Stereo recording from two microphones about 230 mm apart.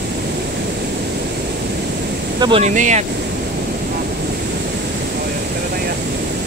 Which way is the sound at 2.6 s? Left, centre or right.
Right.